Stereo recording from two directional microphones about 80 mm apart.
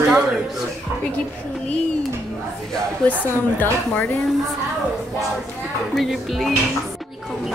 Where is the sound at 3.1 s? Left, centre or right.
Left.